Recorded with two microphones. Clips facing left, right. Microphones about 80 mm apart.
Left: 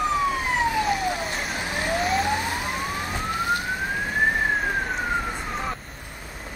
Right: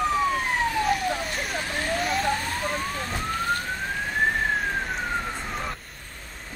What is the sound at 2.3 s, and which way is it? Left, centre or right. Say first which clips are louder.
Emergency vehicle: left 1 dB; centre.